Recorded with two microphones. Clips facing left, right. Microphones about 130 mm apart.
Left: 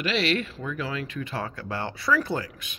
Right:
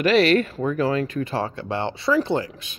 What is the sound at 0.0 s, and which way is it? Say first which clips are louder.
Speech: right 9 dB; 45° right (ahead or behind).